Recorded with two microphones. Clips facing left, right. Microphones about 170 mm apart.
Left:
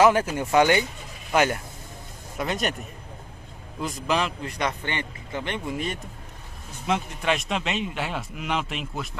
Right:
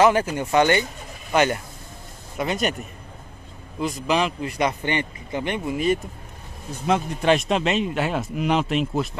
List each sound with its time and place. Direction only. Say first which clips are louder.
0.0 s speech: right 1 dB; centre (ahead or behind)
3.8 s speech: right 3 dB; centre (ahead or behind)
6.9 s a man's voice: right 6 dB; 35° right (ahead or behind)